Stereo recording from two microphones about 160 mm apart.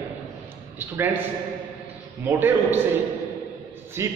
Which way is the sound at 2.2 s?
15° right (ahead or behind).